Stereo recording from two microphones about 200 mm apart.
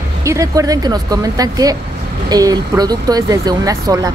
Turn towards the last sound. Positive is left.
turn(degrees=-15)  # may be behind; listen again after turning